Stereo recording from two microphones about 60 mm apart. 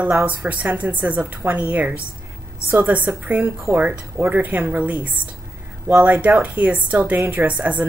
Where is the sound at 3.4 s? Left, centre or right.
Right.